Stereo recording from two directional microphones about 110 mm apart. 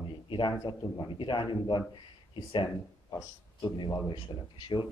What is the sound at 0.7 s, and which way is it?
Speech, 45° left (ahead or behind).